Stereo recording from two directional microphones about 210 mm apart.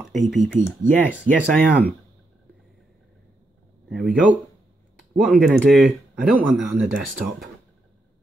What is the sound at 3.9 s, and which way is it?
Speech, centre (ahead or behind).